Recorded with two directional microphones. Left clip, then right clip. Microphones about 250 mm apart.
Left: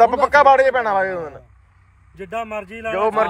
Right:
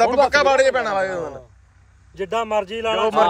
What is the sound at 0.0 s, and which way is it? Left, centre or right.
A man's voice, centre.